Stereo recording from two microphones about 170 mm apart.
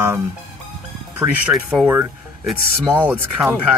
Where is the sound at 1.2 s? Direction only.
5° right (ahead or behind).